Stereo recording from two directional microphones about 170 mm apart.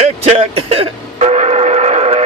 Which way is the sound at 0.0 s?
40° right (ahead or behind).